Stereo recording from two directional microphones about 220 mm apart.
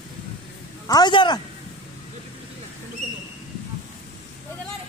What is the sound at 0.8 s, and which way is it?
Speech, 20° left (ahead or behind).